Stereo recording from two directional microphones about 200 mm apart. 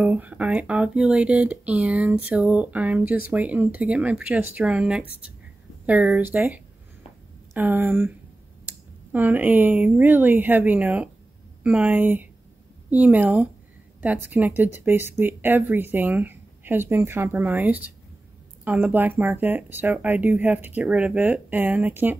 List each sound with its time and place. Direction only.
0.0 s speech: 10° right (ahead or behind)